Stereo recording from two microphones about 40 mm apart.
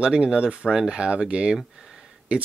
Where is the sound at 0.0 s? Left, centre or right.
Right.